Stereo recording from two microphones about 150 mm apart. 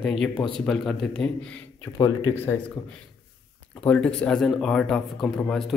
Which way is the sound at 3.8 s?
5° left (ahead or behind).